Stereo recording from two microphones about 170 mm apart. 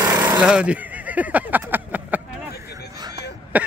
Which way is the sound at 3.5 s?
10° right (ahead or behind).